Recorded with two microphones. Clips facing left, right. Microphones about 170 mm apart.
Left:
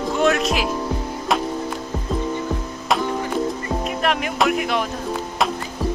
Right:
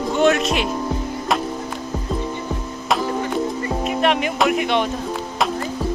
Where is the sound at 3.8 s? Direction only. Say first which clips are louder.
Right 4 dB; centre (ahead or behind).